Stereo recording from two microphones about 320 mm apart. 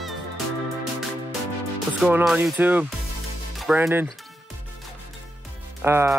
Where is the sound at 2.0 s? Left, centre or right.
Centre.